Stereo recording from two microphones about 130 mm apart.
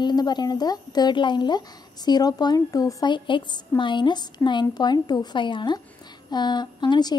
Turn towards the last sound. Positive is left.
turn(degrees=35)  # may be behind; listen again after turning